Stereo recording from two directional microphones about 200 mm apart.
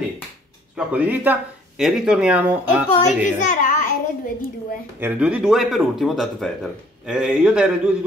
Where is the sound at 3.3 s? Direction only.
40° left (ahead or behind).